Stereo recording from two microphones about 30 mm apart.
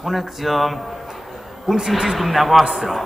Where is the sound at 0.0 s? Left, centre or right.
Centre.